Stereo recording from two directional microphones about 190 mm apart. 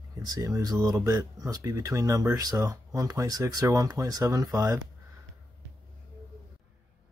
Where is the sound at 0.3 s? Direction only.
20° right (ahead or behind).